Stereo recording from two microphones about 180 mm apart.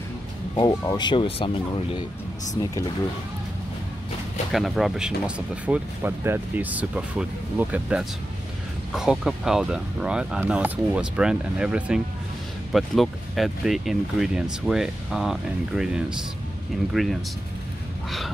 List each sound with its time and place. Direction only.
0.6 s speech: 20° left (ahead or behind)
4.5 s speech: centre (ahead or behind)
16.9 s speech: centre (ahead or behind)